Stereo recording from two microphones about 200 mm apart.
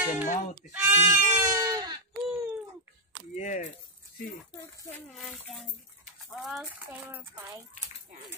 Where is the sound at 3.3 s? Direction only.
35° left (ahead or behind).